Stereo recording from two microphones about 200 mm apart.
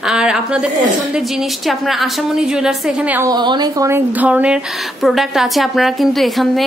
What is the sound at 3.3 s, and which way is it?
A woman's voice, 20° right (ahead or behind).